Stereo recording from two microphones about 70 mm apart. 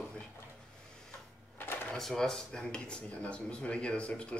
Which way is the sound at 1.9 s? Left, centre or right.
Centre.